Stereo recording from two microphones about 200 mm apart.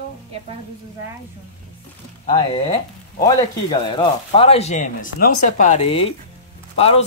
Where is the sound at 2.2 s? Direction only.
25° left (ahead or behind).